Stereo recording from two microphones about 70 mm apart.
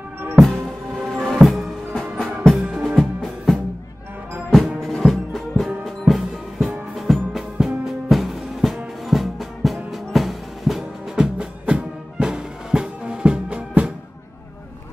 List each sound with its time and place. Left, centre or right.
0.4 s music: centre
1.4 s music: centre
2.0 s music: centre
2.5 s music: centre
4.8 s music: centre
11.3 s music: centre